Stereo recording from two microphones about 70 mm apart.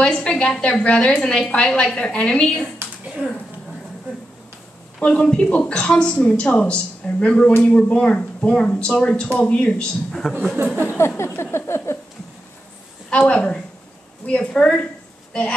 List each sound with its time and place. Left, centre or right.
0.0 s a woman's voice: centre
5.0 s speech: centre
10.9 s a sound: left
13.1 s a woman's voice: centre